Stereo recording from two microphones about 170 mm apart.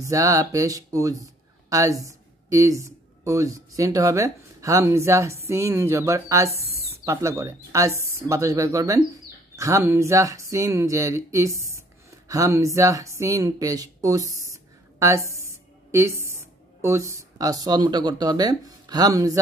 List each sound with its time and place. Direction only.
0.0 s speech: 20° right (ahead or behind)
15.4 s a sound: 15° right (ahead or behind)
16.8 s speech: 15° right (ahead or behind)